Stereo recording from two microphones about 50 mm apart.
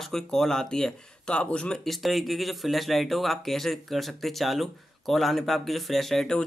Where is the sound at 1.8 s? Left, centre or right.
Centre.